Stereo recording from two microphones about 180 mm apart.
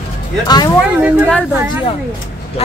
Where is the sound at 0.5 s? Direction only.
20° left (ahead or behind).